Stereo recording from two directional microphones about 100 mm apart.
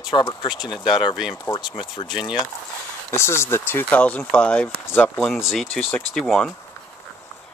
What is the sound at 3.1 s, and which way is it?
Speech, 25° left (ahead or behind).